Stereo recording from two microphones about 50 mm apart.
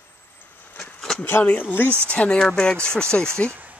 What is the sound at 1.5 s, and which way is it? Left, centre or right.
Speech, left.